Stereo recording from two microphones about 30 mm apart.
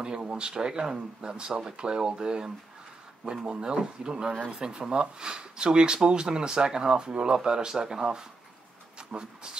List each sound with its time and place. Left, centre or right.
0.2 s speech: right
0.5 s speech: right